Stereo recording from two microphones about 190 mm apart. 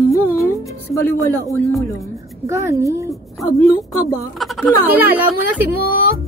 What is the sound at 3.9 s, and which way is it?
Speech, 15° left (ahead or behind).